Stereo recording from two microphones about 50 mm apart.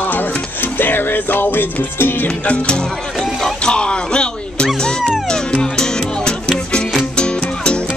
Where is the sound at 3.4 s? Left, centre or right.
Centre.